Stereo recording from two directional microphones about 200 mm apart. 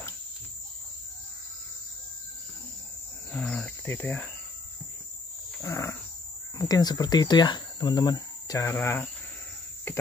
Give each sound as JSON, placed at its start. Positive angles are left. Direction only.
{"t": 3.3, "sound": "speech", "side_deg": 5}
{"t": 5.6, "sound": "wild animals", "side_deg": 15}
{"t": 6.7, "sound": "speech", "side_deg": 20}